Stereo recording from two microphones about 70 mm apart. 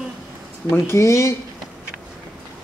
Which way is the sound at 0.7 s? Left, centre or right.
Left.